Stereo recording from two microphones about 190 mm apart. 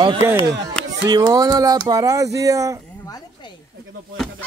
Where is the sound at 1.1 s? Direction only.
20° right (ahead or behind).